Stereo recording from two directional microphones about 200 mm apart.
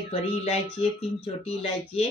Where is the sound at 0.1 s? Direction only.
30° left (ahead or behind).